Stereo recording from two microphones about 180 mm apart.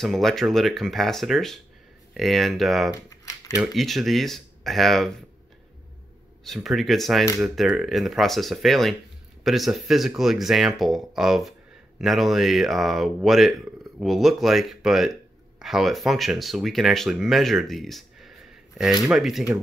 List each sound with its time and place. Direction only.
0.0 s speech: centre (ahead or behind)
2.9 s a sound: 20° left (ahead or behind)
3.7 s speech: centre (ahead or behind)
6.4 s speech: centre (ahead or behind)